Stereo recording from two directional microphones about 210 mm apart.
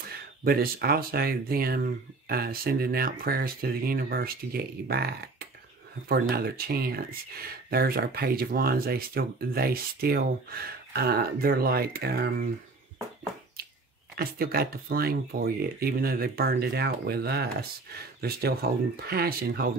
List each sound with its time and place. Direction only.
0.1 s speech: 45° right (ahead or behind)
14.1 s speech: 45° right (ahead or behind)